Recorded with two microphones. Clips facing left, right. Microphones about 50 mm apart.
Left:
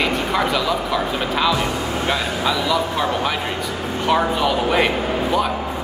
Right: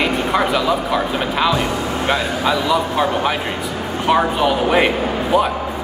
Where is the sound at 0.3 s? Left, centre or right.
Centre.